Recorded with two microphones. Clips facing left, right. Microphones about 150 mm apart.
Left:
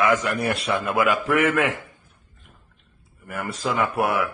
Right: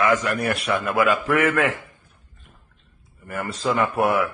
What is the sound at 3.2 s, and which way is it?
A man's voice, 10° left (ahead or behind).